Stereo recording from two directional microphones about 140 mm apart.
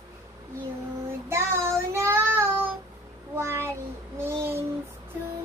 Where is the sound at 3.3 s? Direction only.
15° right (ahead or behind).